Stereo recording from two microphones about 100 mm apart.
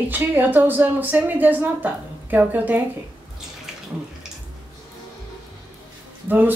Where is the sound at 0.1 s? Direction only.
20° right (ahead or behind).